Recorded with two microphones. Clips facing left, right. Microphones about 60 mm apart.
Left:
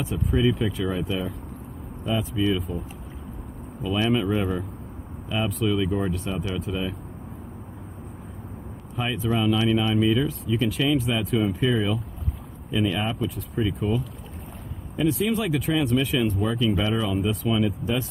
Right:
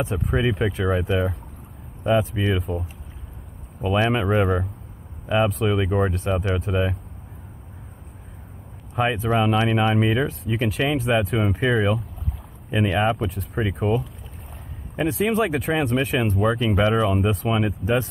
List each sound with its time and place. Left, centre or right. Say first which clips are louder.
0.0 s speech: even; right
3.8 s speech: right 2 dB; right
5.6 s speech: right 3 dB; right
8.9 s speech: right 5 dB; right
15.1 s speech: right 3 dB; right